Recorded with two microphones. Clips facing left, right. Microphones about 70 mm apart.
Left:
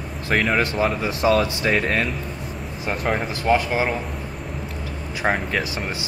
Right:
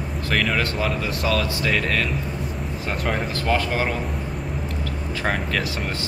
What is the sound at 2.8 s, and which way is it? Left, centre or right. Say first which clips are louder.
Speech: left 2 dB; centre.